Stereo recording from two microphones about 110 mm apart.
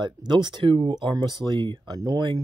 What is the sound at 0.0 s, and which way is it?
Speech, 40° right (ahead or behind).